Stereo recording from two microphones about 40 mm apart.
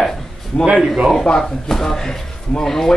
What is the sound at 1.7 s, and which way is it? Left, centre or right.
Speech, centre.